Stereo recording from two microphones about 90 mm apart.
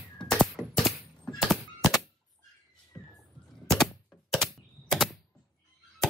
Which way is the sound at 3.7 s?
5° left (ahead or behind).